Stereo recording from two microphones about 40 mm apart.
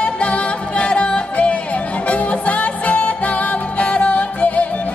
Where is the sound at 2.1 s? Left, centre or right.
Left.